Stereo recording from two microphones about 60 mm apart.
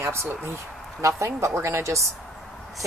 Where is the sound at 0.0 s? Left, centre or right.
Right.